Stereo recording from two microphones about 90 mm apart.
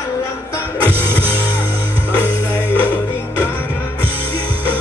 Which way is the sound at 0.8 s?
25° right (ahead or behind).